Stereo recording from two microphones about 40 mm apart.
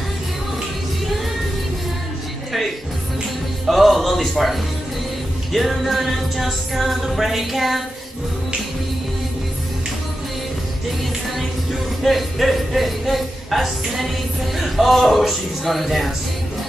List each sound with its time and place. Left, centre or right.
3.6 s a man's voice: centre
5.5 s music: centre
12.0 s speech: centre
14.6 s music: centre